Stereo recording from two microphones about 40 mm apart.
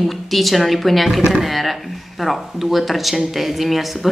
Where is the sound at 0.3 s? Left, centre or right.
Centre.